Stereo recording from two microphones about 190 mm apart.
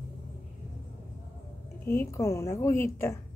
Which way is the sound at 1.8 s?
15° left (ahead or behind).